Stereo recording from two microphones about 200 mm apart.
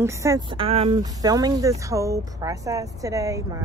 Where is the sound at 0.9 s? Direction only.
20° right (ahead or behind).